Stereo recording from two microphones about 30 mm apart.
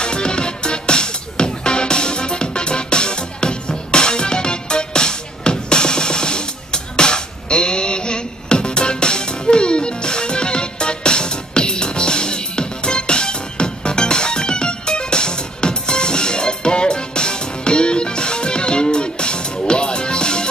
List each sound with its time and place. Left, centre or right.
0.0 s music: left